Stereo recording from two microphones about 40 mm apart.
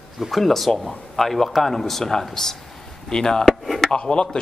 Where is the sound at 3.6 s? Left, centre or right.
Centre.